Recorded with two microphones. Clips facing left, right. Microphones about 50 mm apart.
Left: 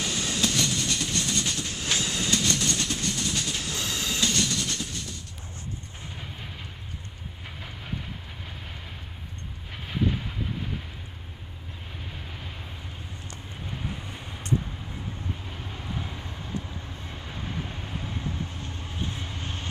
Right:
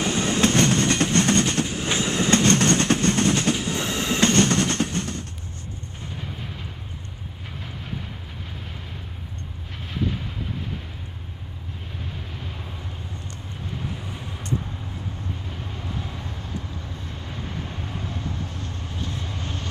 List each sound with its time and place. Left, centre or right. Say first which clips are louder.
0.0 s train: right 7 dB; right
1.8 s train: right 5 dB; right
2.4 s train: right 9 dB; right
3.5 s train: right 6 dB; right
9.8 s vehicle: even; centre
13.8 s vehicle: right 3 dB; centre
15.5 s vehicle: right 3 dB; centre
17.1 s vehicle: even; centre
18.6 s vehicle: right 2 dB; left